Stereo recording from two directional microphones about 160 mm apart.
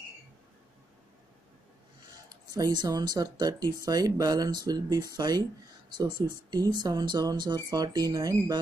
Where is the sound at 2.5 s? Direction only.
25° right (ahead or behind).